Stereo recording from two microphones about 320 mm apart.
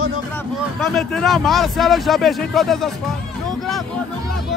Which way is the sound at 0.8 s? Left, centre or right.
Centre.